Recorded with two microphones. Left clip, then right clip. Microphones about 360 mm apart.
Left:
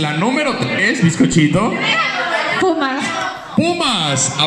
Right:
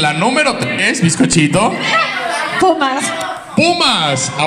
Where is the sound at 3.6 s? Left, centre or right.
Right.